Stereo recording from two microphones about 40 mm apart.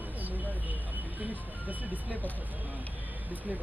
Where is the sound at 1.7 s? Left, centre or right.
Right.